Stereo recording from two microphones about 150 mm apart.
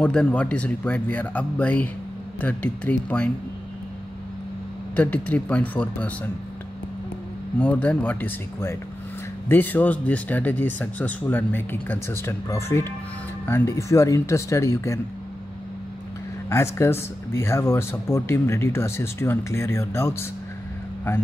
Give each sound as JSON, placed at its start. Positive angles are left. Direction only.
{"t": 0.0, "sound": "speech", "side_deg": 5}
{"t": 4.9, "sound": "speech", "side_deg": 10}
{"t": 7.5, "sound": "speech", "side_deg": 10}
{"t": 16.4, "sound": "speech", "side_deg": 20}